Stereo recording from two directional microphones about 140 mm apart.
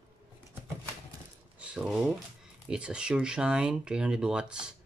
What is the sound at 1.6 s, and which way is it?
Speech, 10° right (ahead or behind).